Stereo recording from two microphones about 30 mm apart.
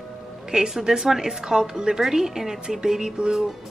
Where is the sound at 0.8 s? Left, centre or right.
Right.